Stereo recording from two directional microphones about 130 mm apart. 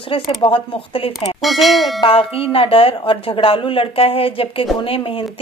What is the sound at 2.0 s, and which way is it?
A woman's voice, 45° left (ahead or behind).